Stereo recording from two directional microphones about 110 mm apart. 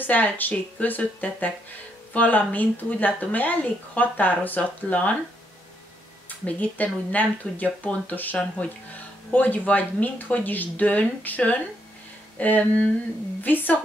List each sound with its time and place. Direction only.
0.0 s a woman's voice: 15° left (ahead or behind)
6.2 s a woman's voice: 15° left (ahead or behind)